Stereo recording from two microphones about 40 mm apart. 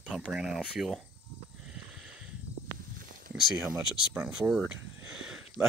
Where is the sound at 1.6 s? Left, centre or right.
Centre.